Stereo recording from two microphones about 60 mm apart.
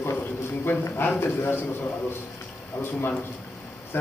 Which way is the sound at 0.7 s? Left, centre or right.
Left.